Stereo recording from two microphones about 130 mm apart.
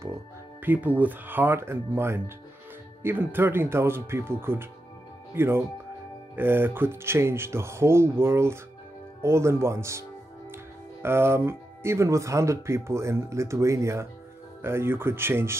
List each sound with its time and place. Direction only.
0.6 s speech: 15° right (ahead or behind)